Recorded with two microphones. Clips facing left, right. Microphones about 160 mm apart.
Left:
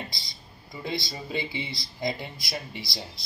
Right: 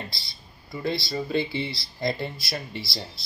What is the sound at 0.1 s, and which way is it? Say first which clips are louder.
Speech: even; 20° left (ahead or behind).